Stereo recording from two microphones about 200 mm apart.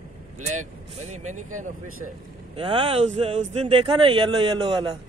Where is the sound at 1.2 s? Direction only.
90° right.